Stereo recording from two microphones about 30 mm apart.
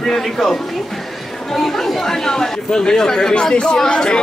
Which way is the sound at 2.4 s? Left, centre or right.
Left.